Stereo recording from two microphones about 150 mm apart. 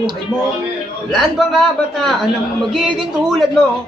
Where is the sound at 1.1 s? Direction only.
Centre (ahead or behind).